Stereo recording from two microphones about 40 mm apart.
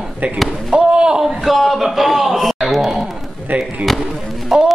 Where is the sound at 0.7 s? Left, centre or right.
Right.